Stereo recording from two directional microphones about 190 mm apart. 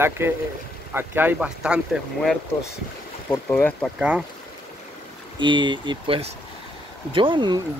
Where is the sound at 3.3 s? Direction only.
10° left (ahead or behind).